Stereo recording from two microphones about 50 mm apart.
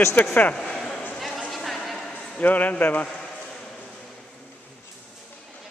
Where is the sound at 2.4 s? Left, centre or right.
Left.